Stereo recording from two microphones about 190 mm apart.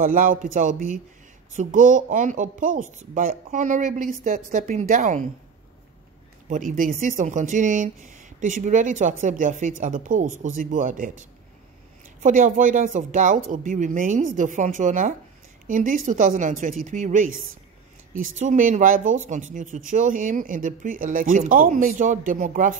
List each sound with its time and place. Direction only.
0.0 s speech: 45° right (ahead or behind)
6.5 s speech: 45° right (ahead or behind)
12.2 s speech: 40° right (ahead or behind)